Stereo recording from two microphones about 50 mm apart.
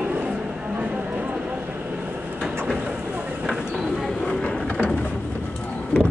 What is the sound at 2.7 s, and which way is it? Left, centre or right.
Vehicle, centre.